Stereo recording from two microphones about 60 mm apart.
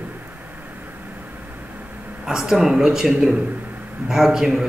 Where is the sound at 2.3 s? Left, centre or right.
Centre.